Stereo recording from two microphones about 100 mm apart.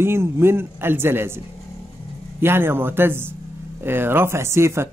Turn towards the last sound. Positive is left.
turn(degrees=-25)  # may be behind; listen again after turning